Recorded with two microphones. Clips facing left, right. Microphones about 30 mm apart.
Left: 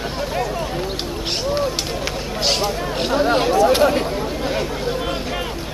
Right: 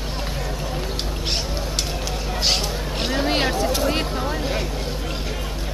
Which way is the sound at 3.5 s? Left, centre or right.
Left.